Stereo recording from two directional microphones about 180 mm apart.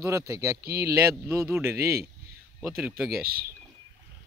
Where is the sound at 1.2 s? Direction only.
15° right (ahead or behind).